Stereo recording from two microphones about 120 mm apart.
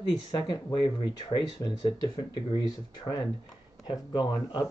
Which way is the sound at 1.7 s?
40° left (ahead or behind).